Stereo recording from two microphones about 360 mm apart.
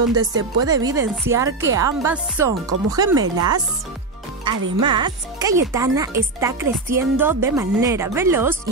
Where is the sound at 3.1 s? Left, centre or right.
Right.